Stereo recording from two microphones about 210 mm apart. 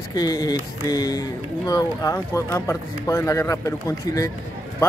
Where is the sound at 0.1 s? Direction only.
15° left (ahead or behind).